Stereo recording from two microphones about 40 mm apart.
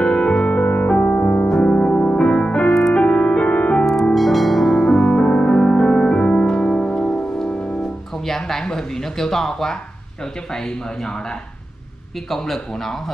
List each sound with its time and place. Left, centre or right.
0.0 s music: left
4.1 s music: centre
4.8 s music: left
8.3 s a man's voice: centre
12.3 s a man's voice: centre